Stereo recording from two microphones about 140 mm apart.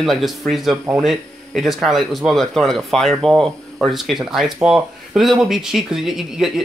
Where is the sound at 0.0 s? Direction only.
Centre (ahead or behind).